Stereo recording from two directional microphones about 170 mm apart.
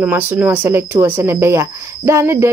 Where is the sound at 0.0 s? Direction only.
10° right (ahead or behind).